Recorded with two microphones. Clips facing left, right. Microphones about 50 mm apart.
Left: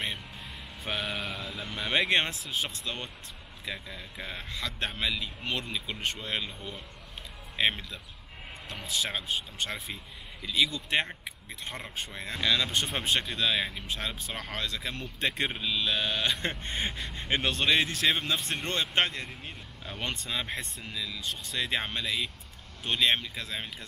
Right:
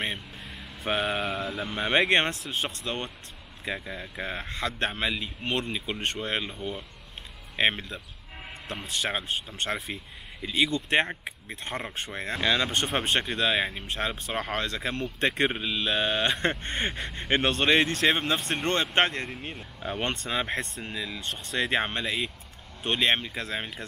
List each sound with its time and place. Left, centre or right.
0.8 s a man's voice: right
2.9 s a man's voice: centre; by 15.4 s right
15.4 s a man's voice: right
18.7 s a man's voice: right
21.2 s speech: right
21.6 s a man's voice: right